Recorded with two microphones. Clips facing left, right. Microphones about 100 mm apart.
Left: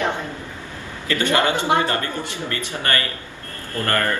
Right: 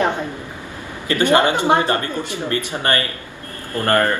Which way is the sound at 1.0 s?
20° right (ahead or behind).